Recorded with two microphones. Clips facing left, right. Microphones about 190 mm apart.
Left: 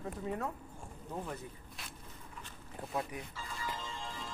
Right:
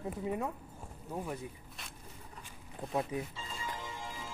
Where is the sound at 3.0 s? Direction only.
20° right (ahead or behind).